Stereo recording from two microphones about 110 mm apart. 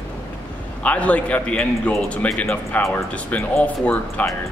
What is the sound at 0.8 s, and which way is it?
Speech, 10° left (ahead or behind).